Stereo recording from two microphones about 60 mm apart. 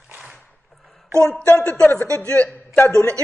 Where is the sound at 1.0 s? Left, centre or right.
Right.